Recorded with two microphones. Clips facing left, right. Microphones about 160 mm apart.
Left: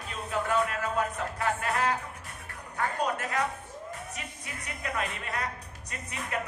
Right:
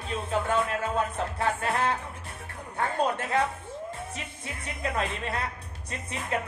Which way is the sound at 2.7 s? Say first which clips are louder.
Right 3 dB; 30° right (ahead or behind).